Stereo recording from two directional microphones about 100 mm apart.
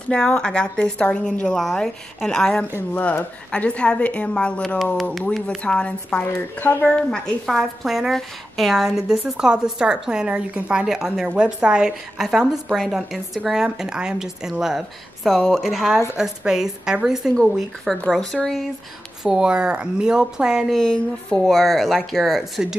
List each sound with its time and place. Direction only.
0.1 s a woman's voice: 5° left (ahead or behind)
6.3 s speech: 25° left (ahead or behind)
6.9 s a woman's voice: 5° left (ahead or behind)
20.7 s a woman's voice: 5° left (ahead or behind)